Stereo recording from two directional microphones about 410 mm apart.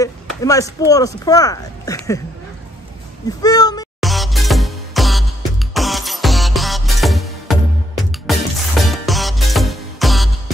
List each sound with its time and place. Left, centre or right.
0.0 s speech: centre
3.3 s music: centre